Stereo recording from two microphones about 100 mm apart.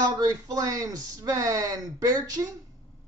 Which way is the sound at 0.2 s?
35° right (ahead or behind).